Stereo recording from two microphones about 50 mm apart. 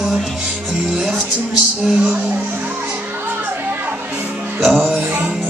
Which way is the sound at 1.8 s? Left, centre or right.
Right.